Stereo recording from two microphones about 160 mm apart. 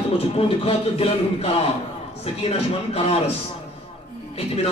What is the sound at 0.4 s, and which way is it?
Speech, 35° left (ahead or behind).